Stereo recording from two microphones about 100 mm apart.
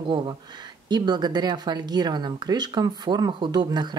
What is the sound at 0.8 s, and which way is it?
Speech, 45° right (ahead or behind).